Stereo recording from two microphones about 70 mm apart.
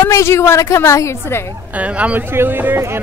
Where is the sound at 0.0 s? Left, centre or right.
Left.